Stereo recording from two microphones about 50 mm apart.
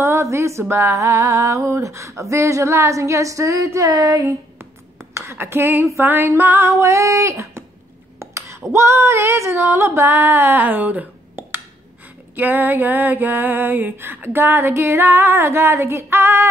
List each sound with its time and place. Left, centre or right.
0.0 s a woman's voice: right
0.7 s female singing: right
5.1 s speech: right
5.9 s female singing: right
6.6 s female singing: right
8.2 s a sound: right
12.4 s female singing: right